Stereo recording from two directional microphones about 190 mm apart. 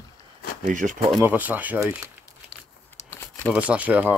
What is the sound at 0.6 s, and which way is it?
Speech, 40° right (ahead or behind).